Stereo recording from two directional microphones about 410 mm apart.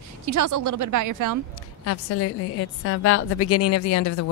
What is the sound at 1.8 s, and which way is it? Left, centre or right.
A woman's voice, left.